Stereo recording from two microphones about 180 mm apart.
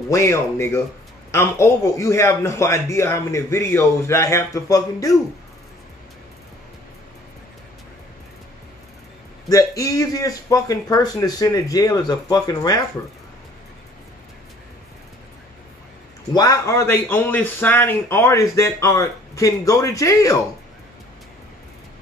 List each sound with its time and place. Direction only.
0.1 s a man's voice: 15° left (ahead or behind)
9.5 s speech: 20° left (ahead or behind)
16.3 s a man's voice: 20° left (ahead or behind)